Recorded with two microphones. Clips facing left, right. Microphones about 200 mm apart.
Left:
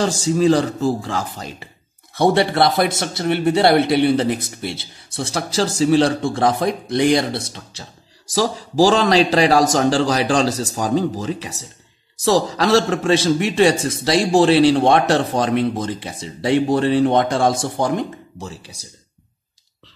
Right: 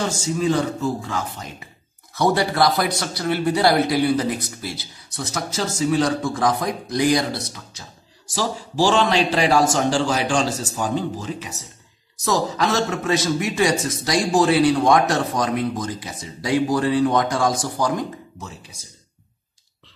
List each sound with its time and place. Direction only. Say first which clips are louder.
0.2 s speech: left 6 dB; 35° left (ahead or behind)
8.4 s speech: left 5 dB; 40° left (ahead or behind)